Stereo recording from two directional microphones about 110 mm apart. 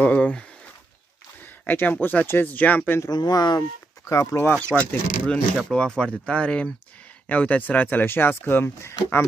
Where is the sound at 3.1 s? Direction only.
40° left (ahead or behind).